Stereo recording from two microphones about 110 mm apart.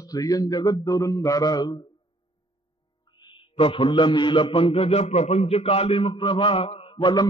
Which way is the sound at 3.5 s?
55° left (ahead or behind).